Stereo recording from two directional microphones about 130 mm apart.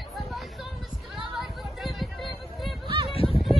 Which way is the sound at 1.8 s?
Centre (ahead or behind).